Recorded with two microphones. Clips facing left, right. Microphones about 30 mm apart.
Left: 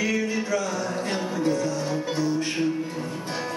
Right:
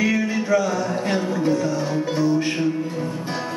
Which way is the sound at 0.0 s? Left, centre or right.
Centre.